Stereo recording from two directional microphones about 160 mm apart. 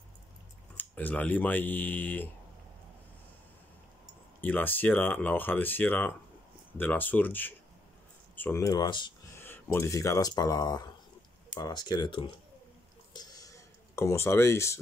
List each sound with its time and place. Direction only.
0.7 s speech: 10° left (ahead or behind)
4.4 s speech: 10° left (ahead or behind); by 9.1 s 25° left (ahead or behind)
9.4 s speech: 15° left (ahead or behind); by 12.3 s 30° left (ahead or behind)
13.1 s a sound: 25° left (ahead or behind)